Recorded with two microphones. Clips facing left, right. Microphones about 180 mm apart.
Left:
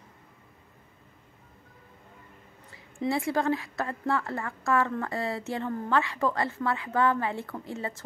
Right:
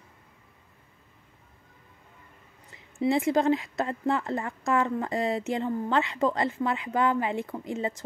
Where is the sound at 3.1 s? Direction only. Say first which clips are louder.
Right 4 dB; 20° right (ahead or behind).